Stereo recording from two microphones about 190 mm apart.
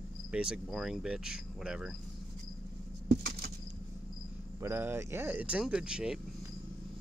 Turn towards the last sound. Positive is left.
turn(degrees=-5)  # may be behind; listen again after turning